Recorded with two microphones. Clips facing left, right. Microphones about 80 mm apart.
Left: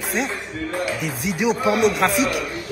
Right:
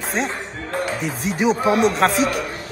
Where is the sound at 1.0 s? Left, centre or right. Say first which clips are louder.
Right 2 dB; centre.